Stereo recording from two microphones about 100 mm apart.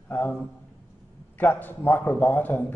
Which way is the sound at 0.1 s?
15° left (ahead or behind).